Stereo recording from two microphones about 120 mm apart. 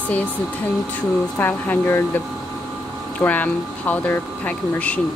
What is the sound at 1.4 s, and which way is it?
Speech, 15° left (ahead or behind).